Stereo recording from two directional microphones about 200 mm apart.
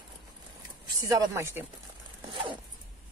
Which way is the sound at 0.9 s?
15° right (ahead or behind).